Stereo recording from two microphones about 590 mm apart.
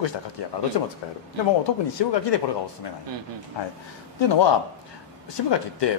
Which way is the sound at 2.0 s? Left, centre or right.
Left.